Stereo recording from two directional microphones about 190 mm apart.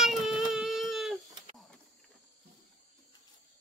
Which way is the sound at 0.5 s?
Centre (ahead or behind).